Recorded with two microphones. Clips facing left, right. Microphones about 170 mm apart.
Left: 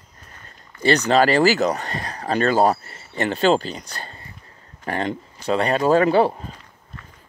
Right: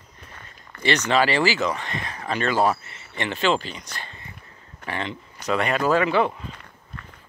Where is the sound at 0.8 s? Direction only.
35° left (ahead or behind).